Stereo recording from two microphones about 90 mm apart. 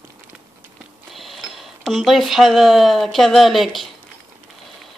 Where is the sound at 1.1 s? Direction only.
Centre (ahead or behind).